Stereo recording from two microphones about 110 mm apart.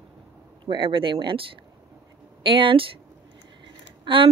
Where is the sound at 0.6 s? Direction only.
50° right (ahead or behind).